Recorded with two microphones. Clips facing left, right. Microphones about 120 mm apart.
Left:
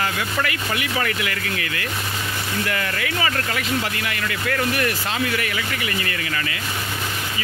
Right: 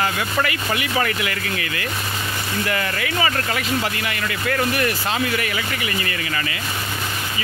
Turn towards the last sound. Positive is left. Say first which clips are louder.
# right 1 dB
turn(degrees=-20)  # may be behind; listen again after turning